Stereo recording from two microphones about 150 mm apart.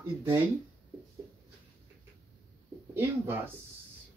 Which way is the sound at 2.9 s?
15° right (ahead or behind).